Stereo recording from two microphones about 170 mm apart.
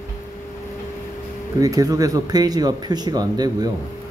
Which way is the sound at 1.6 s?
20° right (ahead or behind).